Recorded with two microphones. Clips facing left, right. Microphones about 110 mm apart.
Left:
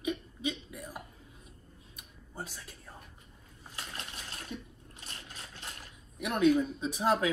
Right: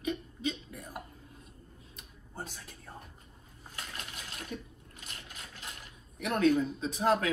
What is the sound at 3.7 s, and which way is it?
Coin, 30° left (ahead or behind).